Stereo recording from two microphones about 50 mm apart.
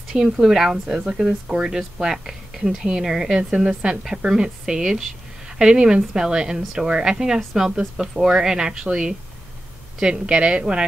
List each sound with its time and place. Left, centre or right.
0.1 s speech: centre
9.9 s speech: centre